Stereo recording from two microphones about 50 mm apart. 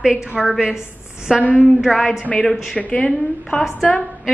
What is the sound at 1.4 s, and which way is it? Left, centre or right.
Speech, left.